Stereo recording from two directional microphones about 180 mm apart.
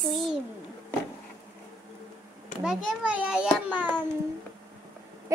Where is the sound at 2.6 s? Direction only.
5° right (ahead or behind).